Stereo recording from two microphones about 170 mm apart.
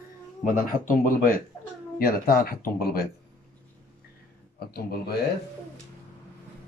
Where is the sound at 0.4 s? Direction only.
55° left (ahead or behind).